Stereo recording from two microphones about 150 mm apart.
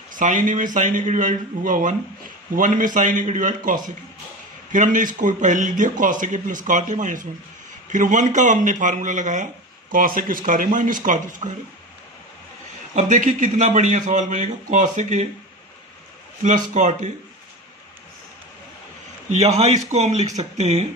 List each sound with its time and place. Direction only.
0.1 s speech: 60° right (ahead or behind)
12.9 s speech: 55° right (ahead or behind)
16.4 s speech: 55° right (ahead or behind)
19.2 s speech: 45° right (ahead or behind)